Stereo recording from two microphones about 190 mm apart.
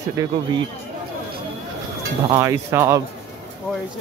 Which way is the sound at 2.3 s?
15° right (ahead or behind).